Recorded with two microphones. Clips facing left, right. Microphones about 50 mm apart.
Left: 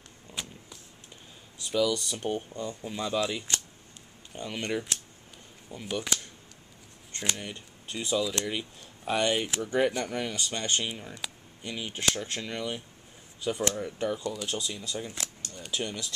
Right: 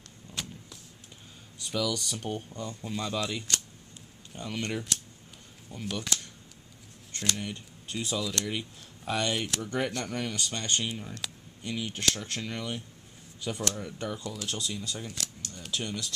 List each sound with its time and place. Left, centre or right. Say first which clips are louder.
0.3 s vehicle: even; centre
1.7 s speech: left 4 dB; centre
7.3 s speech: right 2 dB; centre
12.2 s speech: left 2 dB; centre
13.4 s speech: left 4 dB; centre